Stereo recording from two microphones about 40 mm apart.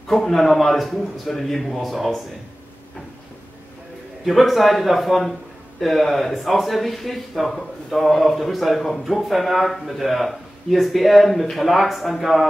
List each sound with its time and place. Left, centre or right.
0.1 s speech: centre
4.3 s speech: centre